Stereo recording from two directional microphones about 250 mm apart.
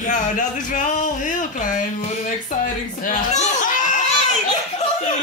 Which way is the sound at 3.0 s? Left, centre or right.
Left.